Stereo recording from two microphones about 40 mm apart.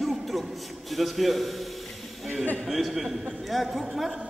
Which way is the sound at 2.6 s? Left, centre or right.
Centre.